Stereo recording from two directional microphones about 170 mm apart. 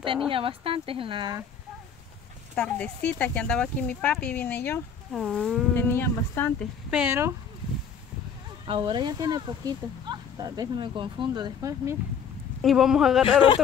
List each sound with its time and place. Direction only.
0.3 s speech: 30° right (ahead or behind)
2.5 s speech: 10° left (ahead or behind)
5.1 s speech: centre (ahead or behind)
6.9 s speech: 10° right (ahead or behind)
8.6 s speech: 30° right (ahead or behind)
12.6 s speech: 5° right (ahead or behind)